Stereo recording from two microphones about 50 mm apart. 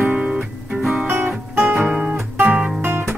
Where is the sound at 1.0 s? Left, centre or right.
Right.